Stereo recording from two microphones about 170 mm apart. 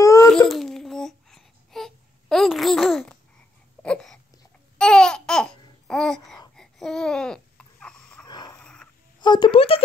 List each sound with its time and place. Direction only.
0.0 s baby cry: 20° left (ahead or behind)
0.5 s babbling: centre (ahead or behind)
3.8 s a sound: 5° left (ahead or behind)
4.7 s babbling: 5° left (ahead or behind)
8.3 s wheeze: 25° left (ahead or behind)
8.5 s wheeze: 5° left (ahead or behind)
9.2 s a sound: 25° left (ahead or behind)